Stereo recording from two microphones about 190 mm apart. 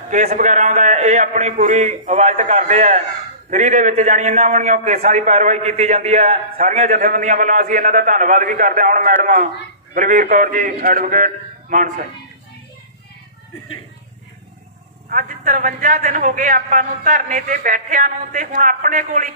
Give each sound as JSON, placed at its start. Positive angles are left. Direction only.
{"t": 0.1, "sound": "a man's voice", "side_deg": -40}
{"t": 15.0, "sound": "a man's voice", "side_deg": -45}